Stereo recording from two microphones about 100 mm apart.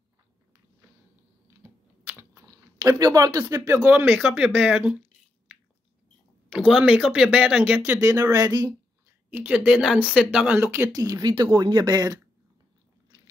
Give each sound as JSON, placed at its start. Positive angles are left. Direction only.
{"t": 1.6, "sound": "typing", "side_deg": -20}
{"t": 2.4, "sound": "a sound", "side_deg": -40}
{"t": 3.5, "sound": "speech", "side_deg": -30}
{"t": 3.8, "sound": "speech", "side_deg": -15}
{"t": 6.5, "sound": "speech", "side_deg": -5}
{"t": 8.0, "sound": "speech", "side_deg": -35}
{"t": 9.3, "sound": "speech", "side_deg": -15}
{"t": 10.9, "sound": "speech", "side_deg": -40}